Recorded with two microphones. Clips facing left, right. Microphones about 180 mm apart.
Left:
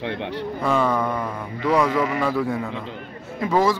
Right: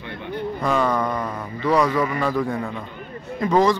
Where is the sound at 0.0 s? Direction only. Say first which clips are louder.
Left 2 dB; 85° left.